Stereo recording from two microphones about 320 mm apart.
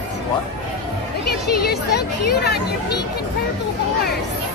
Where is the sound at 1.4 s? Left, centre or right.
Left.